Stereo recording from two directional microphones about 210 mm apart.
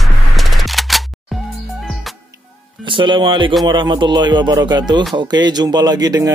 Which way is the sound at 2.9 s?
25° right (ahead or behind).